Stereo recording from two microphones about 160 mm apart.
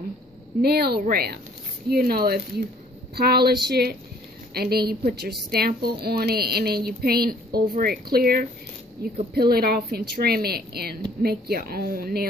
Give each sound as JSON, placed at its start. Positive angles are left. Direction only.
{"t": 0.6, "sound": "a woman's voice", "side_deg": -80}